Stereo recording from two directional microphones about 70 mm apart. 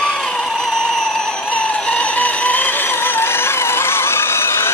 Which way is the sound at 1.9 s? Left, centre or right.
Centre.